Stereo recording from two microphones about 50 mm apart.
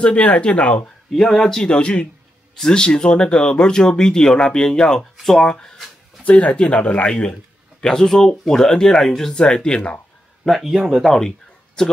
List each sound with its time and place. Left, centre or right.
0.0 s speech: left
1.1 s speech: centre
1.7 s speech: left
7.8 s speech: centre
9.3 s speech: centre
10.6 s speech: centre
11.1 s speech: centre